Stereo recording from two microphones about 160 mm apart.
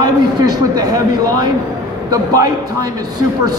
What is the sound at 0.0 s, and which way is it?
A man's voice, 25° right (ahead or behind).